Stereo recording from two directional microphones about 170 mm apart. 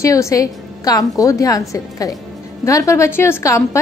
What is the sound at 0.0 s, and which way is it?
A woman's voice, 20° left (ahead or behind).